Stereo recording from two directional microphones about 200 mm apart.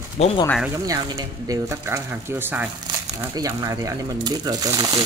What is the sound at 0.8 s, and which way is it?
Speech, 15° right (ahead or behind).